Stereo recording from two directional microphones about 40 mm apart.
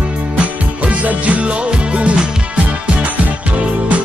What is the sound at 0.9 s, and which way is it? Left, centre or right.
Music, right.